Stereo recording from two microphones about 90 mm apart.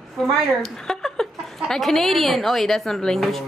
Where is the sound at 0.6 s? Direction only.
5° left (ahead or behind).